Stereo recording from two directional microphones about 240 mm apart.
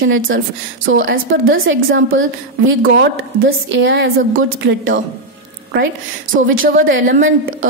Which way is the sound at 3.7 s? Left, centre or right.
Right.